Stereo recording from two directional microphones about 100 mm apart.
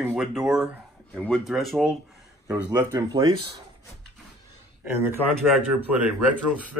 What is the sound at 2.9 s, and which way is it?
Speech, 40° right (ahead or behind).